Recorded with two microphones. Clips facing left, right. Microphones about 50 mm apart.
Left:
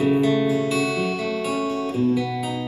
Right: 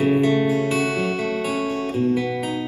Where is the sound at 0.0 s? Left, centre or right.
Right.